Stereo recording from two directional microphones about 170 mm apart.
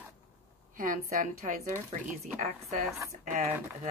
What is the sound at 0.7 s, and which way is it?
Speech, 55° right (ahead or behind).